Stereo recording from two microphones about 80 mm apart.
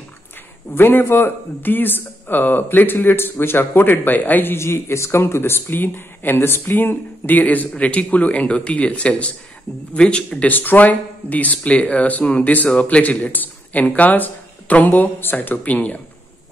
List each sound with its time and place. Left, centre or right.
0.7 s speech: left